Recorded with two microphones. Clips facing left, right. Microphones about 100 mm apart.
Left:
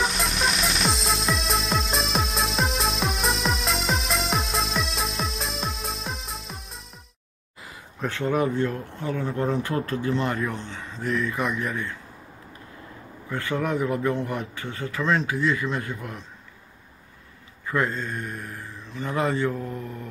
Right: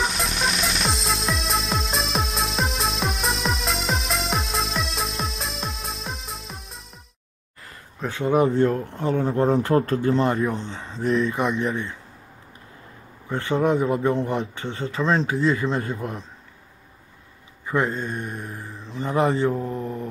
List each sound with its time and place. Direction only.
0.0 s music: centre (ahead or behind)
8.1 s speech: 15° right (ahead or behind)
8.5 s speech: 30° right (ahead or behind)
13.3 s speech: 25° right (ahead or behind)
17.6 s speech: 20° right (ahead or behind)